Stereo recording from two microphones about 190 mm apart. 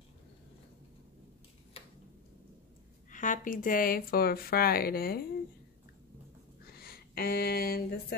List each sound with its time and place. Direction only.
3.1 s speech: 45° left (ahead or behind)
6.6 s speech: 55° left (ahead or behind)